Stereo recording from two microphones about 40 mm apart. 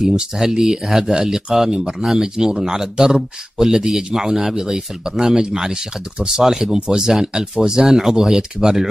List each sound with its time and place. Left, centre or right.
0.0 s speech: centre